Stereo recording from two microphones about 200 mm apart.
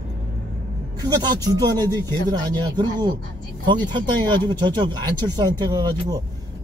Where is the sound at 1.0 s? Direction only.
20° right (ahead or behind).